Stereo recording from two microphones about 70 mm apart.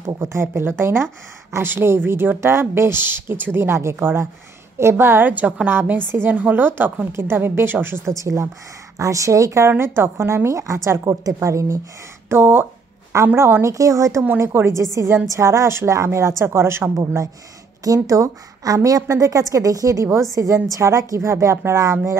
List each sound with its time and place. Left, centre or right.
0.0 s a woman's voice: right
8.2 s a woman's voice: right
12.3 s speech: right
13.7 s a woman's voice: right
14.4 s speech: right
15.2 s speech: right
17.8 s a woman's voice: right